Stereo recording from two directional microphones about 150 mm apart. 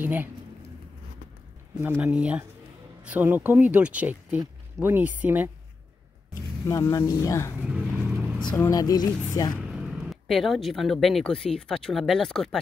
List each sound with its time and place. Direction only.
0.0 s speech: 15° right (ahead or behind)
1.8 s speech: 10° right (ahead or behind)
6.7 s speech: 20° left (ahead or behind)
8.0 s vehicle: 5° left (ahead or behind)
8.5 s speech: 20° left (ahead or behind)
9.7 s speech: 5° right (ahead or behind)